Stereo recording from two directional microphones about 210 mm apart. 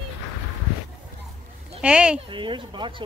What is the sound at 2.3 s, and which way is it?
Speech, 20° right (ahead or behind).